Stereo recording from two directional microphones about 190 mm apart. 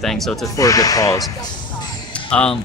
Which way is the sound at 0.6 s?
20° left (ahead or behind).